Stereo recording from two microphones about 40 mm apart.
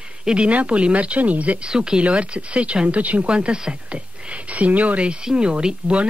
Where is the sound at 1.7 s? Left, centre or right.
Right.